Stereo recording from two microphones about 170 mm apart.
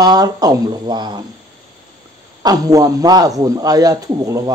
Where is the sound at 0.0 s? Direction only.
20° right (ahead or behind).